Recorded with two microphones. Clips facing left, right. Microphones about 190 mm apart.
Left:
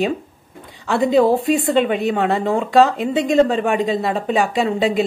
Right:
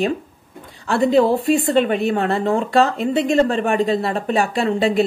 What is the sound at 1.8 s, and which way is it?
Speech, 15° left (ahead or behind).